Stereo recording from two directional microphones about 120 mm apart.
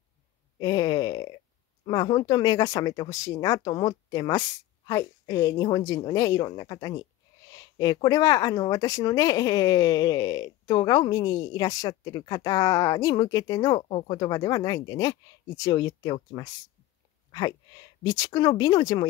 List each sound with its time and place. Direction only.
0.6 s a woman's voice: 35° left (ahead or behind)
13.7 s speech: 50° left (ahead or behind)
14.1 s speech: 35° left (ahead or behind)